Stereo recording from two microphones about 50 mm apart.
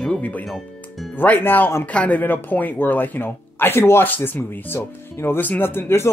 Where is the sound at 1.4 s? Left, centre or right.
Left.